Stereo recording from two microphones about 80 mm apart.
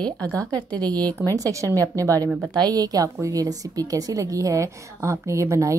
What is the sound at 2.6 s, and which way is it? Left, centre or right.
A woman's voice, right.